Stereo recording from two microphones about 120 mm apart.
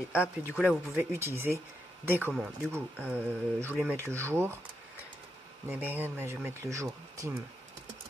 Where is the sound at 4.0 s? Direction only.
20° right (ahead or behind).